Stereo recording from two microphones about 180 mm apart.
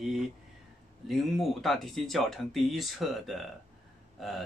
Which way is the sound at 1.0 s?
Centre (ahead or behind).